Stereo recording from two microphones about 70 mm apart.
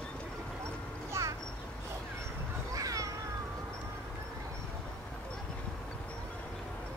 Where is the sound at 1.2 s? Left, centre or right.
Right.